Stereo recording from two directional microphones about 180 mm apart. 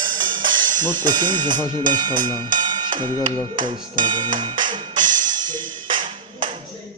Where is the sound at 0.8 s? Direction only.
25° right (ahead or behind).